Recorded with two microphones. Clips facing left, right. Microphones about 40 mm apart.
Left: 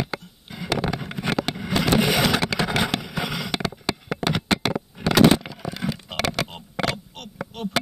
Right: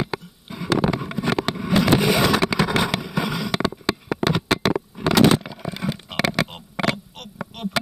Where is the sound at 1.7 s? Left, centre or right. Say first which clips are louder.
Right 4 dB; right.